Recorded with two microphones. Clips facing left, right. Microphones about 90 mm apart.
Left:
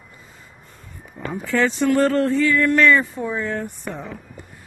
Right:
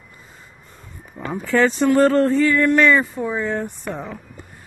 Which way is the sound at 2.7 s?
25° right (ahead or behind).